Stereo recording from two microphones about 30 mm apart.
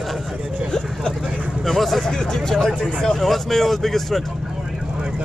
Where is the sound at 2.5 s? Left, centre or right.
Centre.